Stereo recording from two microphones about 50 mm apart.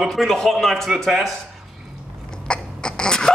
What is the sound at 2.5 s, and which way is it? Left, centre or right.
Cough, centre.